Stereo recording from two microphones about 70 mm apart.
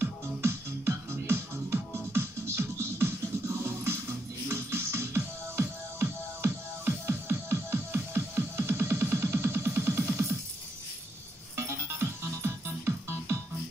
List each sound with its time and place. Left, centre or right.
0.0 s music: right
11.5 s music: right